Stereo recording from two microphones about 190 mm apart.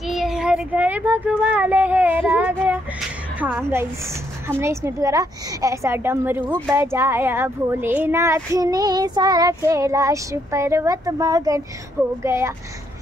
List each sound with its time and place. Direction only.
0.0 s speech: centre (ahead or behind)